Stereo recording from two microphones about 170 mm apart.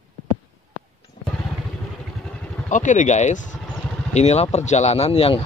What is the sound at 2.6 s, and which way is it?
Speech, 45° left (ahead or behind).